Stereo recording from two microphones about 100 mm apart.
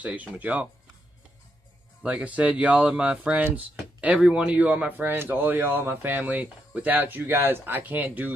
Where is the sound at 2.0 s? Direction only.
15° right (ahead or behind).